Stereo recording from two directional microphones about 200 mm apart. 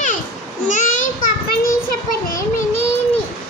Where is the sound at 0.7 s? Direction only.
40° left (ahead or behind).